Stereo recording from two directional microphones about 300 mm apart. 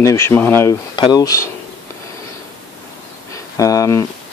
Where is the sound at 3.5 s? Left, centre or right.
Centre.